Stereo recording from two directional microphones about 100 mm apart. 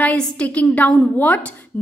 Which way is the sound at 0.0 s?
15° left (ahead or behind).